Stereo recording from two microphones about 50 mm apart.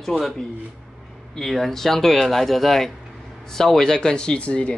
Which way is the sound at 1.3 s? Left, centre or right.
Centre.